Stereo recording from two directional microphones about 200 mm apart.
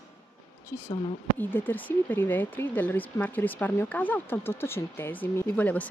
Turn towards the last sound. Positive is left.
turn(degrees=10)  # may be behind; listen again after turning